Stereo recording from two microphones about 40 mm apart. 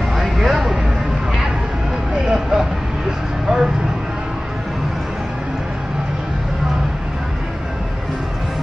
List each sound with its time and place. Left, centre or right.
0.1 s vehicle: centre
2.2 s vehicle: centre
3.4 s a sound: centre